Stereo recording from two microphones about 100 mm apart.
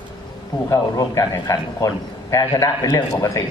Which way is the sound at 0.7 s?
35° left (ahead or behind).